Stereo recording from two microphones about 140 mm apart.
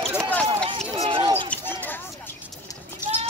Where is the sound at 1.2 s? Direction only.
40° right (ahead or behind).